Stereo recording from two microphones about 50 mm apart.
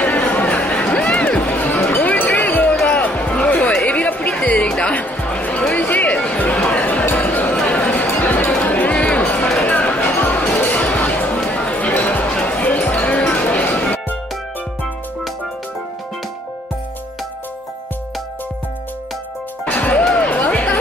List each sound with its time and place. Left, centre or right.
0.0 s a sound: left
1.0 s music: left
2.9 s basketball bounce: left
3.8 s chatter: left
4.9 s music: left
5.9 s music: left
6.1 s music: left
7.5 s chatter: left
8.6 s music: left
8.9 s music: left
19.6 s music: left